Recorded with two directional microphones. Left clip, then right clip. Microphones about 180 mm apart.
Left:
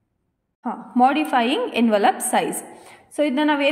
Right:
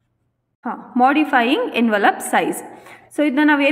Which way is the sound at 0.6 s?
10° left (ahead or behind).